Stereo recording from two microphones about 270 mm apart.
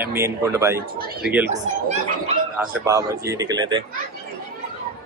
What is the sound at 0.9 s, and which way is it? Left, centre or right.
A woman's voice, right.